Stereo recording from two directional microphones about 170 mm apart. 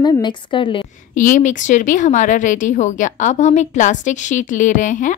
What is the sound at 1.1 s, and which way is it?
A woman's voice, 50° left (ahead or behind).